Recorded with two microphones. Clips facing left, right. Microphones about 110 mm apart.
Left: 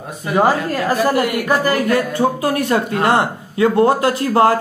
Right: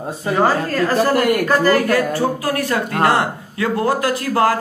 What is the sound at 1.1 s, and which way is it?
Speech, 50° right (ahead or behind).